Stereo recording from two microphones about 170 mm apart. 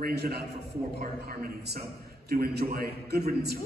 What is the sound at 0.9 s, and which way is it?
A man's voice, 65° right (ahead or behind).